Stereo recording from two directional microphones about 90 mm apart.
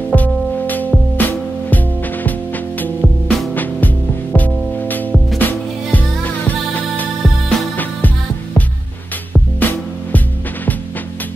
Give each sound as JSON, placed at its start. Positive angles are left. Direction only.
{"t": 0.1, "sound": "music", "side_deg": 20}
{"t": 9.3, "sound": "music", "side_deg": 20}